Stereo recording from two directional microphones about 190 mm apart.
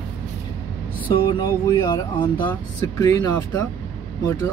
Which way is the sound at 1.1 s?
25° left (ahead or behind).